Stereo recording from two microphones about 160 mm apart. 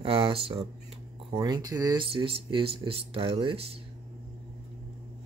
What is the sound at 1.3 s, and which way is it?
Speech, 25° right (ahead or behind).